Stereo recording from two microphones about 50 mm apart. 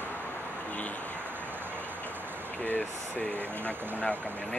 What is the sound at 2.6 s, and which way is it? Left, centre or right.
Speech, left.